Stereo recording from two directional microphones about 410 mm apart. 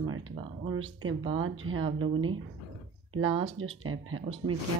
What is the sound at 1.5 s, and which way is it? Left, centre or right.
Speech, right.